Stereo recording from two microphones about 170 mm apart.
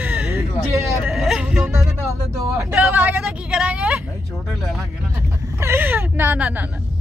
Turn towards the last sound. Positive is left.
turn(degrees=-10)  # may be behind; listen again after turning